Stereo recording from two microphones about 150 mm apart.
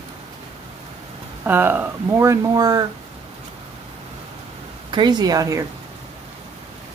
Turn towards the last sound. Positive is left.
turn(degrees=-20)  # may be behind; listen again after turning